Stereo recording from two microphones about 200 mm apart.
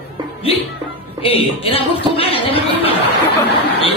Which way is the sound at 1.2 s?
30° left (ahead or behind).